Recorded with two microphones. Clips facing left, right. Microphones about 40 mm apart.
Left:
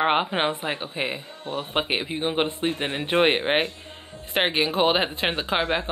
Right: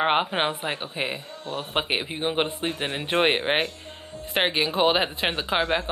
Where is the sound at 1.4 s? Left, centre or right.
Left.